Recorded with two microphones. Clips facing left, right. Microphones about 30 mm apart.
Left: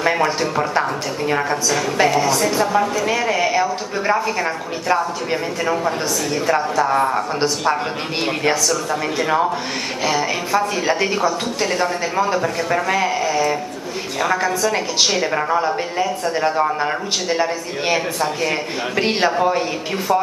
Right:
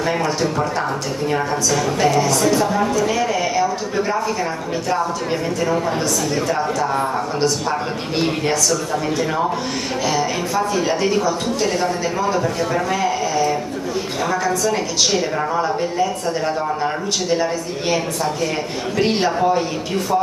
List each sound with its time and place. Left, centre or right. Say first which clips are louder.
0.0 s a man's voice: left 1 dB; centre
2.0 s a man's voice: left 2 dB; centre
9.2 s a man's voice: left 2 dB; centre